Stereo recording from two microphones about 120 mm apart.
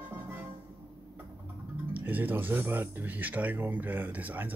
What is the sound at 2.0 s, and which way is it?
Speech, 15° right (ahead or behind).